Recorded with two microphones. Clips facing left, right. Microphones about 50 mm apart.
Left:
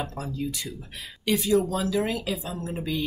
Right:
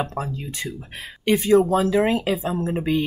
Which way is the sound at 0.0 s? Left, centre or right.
Right.